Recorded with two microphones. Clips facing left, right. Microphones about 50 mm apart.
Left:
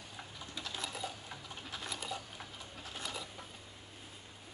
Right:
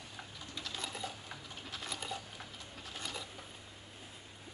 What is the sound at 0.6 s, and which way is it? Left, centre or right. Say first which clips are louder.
Sewing machine: left 1 dB; centre.